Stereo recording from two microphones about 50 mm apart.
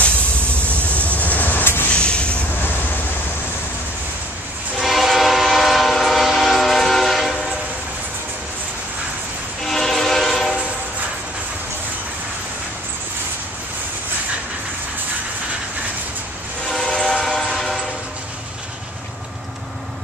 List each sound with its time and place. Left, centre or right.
1.0 s train: left
1.9 s vehicle: left
4.8 s train: centre
9.7 s train: centre
16.6 s train: centre
16.9 s train: centre